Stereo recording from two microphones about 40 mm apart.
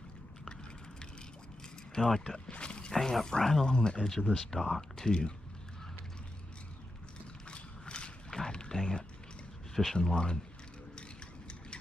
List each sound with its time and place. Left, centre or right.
2.0 s speech: centre
2.5 s a sound: left
2.9 s speech: centre
4.4 s speech: centre
4.9 s speech: centre
7.4 s a sound: left
10.0 s speech: centre
11.0 s mechanisms: left